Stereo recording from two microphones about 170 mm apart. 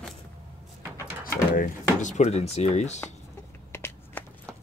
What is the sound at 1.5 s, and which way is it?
Speech, 45° left (ahead or behind).